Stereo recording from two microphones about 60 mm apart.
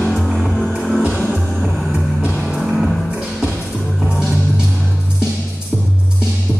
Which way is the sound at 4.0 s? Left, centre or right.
Centre.